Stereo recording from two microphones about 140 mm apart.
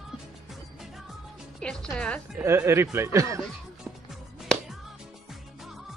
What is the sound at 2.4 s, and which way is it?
Speech, 20° right (ahead or behind).